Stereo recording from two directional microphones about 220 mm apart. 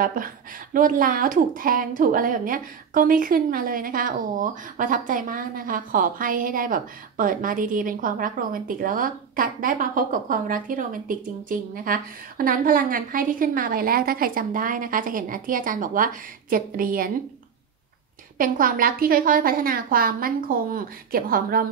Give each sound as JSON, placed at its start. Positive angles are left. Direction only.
{"t": 0.0, "sound": "a woman's voice", "side_deg": -40}
{"t": 18.4, "sound": "a woman's voice", "side_deg": -40}